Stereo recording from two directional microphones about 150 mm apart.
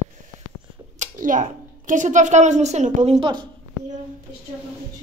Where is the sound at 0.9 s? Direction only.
60° right (ahead or behind).